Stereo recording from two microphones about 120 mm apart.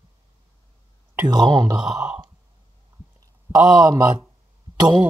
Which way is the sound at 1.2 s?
35° right (ahead or behind).